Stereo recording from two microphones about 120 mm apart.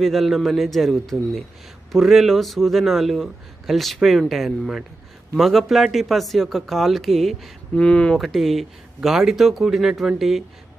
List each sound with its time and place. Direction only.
0.0 s speech: centre (ahead or behind)